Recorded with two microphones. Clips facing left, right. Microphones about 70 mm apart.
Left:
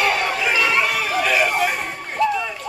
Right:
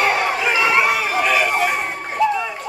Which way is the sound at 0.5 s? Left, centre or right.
Right.